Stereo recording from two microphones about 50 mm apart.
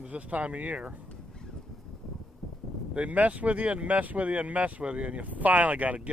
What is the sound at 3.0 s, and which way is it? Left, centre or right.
Speech, right.